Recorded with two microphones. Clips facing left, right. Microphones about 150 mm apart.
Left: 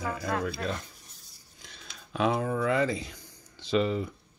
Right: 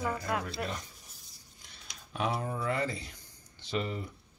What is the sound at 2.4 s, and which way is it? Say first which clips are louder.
Speech: left 6 dB; 90° left.